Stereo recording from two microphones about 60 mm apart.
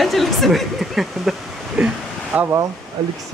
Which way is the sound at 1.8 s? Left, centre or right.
Centre.